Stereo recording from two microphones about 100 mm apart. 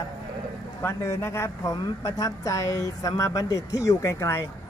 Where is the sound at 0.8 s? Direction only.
25° left (ahead or behind).